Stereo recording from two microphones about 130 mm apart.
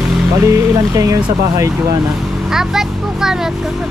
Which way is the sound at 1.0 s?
25° right (ahead or behind).